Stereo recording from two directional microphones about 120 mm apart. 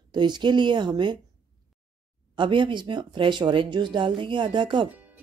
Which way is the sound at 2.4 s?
45° right (ahead or behind).